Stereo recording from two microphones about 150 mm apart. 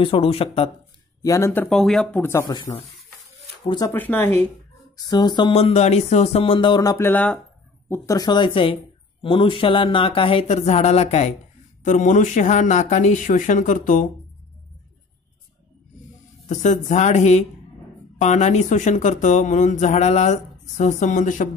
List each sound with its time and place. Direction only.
0.0 s speech: 35° left (ahead or behind)
1.2 s speech: 20° left (ahead or behind)
1.7 s speech: centre (ahead or behind); by 3.9 s 30° left (ahead or behind)
3.9 s speech: 10° left (ahead or behind)
4.9 s speech: 25° left (ahead or behind)
6.8 s speech: 20° left (ahead or behind)
7.9 s speech: 25° left (ahead or behind); by 11.3 s 45° left (ahead or behind)
11.8 s speech: 55° left (ahead or behind)
16.4 s speech: 50° left (ahead or behind)